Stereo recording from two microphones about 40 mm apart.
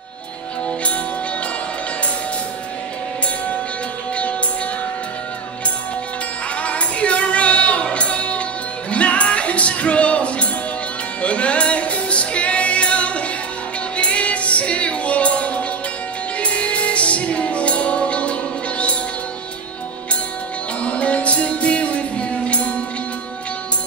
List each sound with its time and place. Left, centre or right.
6.6 s music: left
20.8 s music: left